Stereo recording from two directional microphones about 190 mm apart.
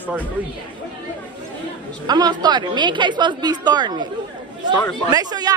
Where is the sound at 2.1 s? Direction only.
20° right (ahead or behind).